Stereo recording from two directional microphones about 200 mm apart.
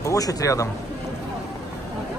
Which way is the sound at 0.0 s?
15° left (ahead or behind).